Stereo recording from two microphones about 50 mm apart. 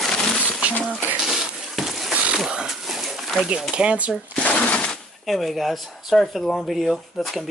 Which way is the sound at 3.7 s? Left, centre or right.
Right.